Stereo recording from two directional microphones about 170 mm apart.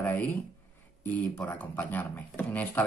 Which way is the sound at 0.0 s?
10° left (ahead or behind).